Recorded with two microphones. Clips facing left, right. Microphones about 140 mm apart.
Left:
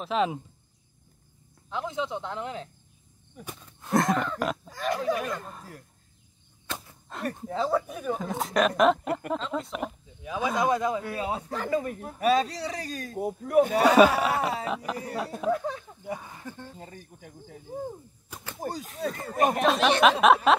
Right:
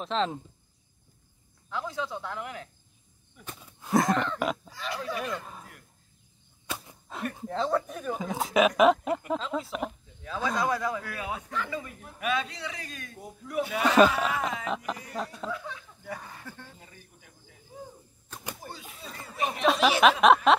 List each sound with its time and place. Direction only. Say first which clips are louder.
0.0 s speech: left 2 dB; 10° left (ahead or behind)
1.7 s speech: left 3 dB; 20° left (ahead or behind)
3.6 s a sound: even; centre (ahead or behind)
4.6 s speech: left 7 dB; 45° left (ahead or behind)
6.7 s a sound: even; 5° right (ahead or behind)
7.3 s speech: left 1 dB; 5° left (ahead or behind)
10.2 s speech: left 3 dB; 15° left (ahead or behind); by 13.2 s 35° left (ahead or behind)
13.2 s speech: left 10 dB; 55° left (ahead or behind)
16.2 s speech: left 3 dB; 15° left (ahead or behind)
16.7 s speech: left 8 dB; 40° left (ahead or behind)
19.6 s speech: right 2 dB; centre (ahead or behind)